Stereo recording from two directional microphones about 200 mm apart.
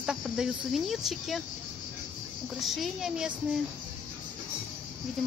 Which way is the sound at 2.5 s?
Centre (ahead or behind).